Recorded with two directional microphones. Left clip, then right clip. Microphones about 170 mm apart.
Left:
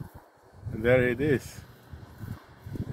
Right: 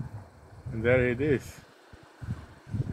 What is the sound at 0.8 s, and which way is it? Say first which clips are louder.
Speech: left 1 dB; 15° left (ahead or behind).